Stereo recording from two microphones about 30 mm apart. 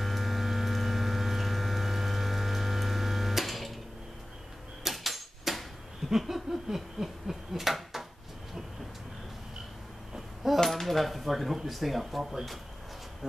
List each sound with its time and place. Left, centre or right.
0.0 s vehicle: centre
4.8 s tick-tock: centre
6.0 s a sound: centre
10.1 s a sound: centre
10.6 s speech: centre
12.2 s speech: centre